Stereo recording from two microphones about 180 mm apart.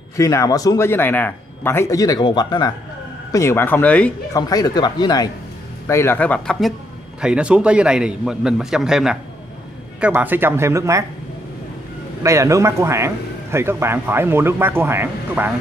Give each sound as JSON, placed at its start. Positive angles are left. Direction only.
{"t": 0.2, "sound": "speech", "side_deg": 15}
{"t": 4.3, "sound": "a man's voice", "side_deg": 20}
{"t": 12.2, "sound": "speech", "side_deg": -15}